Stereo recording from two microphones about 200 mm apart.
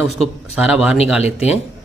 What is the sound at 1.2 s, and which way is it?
Speech, 30° left (ahead or behind).